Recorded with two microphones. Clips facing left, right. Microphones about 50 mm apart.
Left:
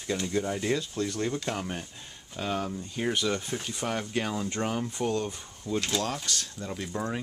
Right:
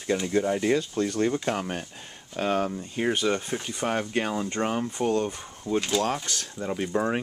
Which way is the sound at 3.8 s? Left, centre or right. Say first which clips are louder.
Right 4 dB; right.